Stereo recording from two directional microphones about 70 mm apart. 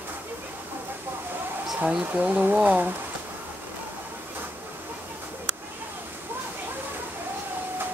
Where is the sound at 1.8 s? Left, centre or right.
Right.